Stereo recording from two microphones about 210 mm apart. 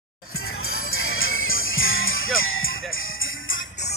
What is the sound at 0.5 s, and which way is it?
Music, 80° left.